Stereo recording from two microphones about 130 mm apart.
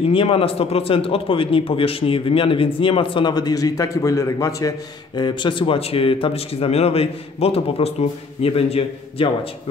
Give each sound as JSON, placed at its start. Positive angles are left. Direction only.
{"t": 0.1, "sound": "a man's voice", "side_deg": 45}